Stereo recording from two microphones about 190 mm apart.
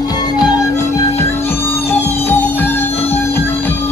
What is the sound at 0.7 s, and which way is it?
Music, 35° left (ahead or behind).